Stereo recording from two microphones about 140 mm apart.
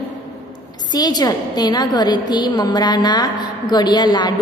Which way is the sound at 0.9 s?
30° left (ahead or behind).